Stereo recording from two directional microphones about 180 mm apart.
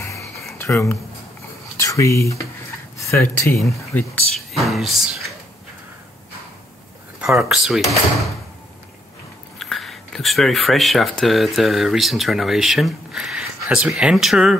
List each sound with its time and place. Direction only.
0.6 s speech: 15° left (ahead or behind); by 5.3 s centre (ahead or behind)
7.2 s speech: centre (ahead or behind)
9.6 s speech: centre (ahead or behind)